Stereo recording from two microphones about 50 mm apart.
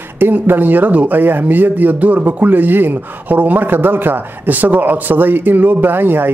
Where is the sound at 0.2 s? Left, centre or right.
Right.